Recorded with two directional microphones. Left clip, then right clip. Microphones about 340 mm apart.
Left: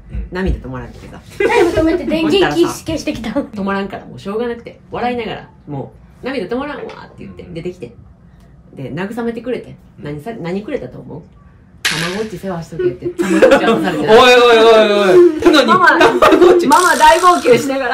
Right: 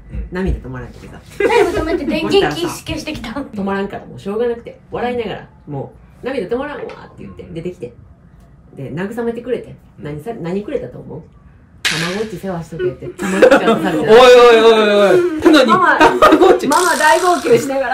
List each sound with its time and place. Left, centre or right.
0.1 s a man's voice: centre
2.2 s a woman's voice: centre
3.5 s a man's voice: centre
11.8 s a sound: centre
12.4 s a man's voice: centre